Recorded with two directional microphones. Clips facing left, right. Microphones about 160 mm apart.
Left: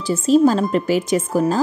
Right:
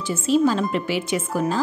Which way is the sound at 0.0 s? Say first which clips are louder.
Left 5 dB; 40° left (ahead or behind).